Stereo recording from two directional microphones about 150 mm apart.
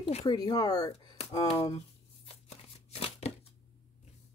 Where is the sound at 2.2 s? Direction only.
40° left (ahead or behind).